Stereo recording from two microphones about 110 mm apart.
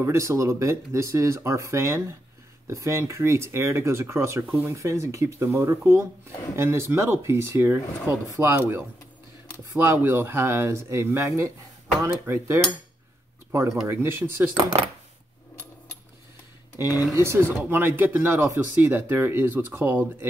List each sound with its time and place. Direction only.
0.0 s speech: 25° right (ahead or behind)
16.7 s speech: 20° right (ahead or behind)